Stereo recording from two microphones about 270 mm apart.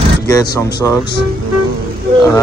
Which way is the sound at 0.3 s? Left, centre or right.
Centre.